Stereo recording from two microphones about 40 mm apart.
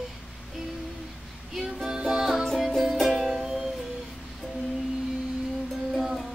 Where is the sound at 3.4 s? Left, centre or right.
Centre.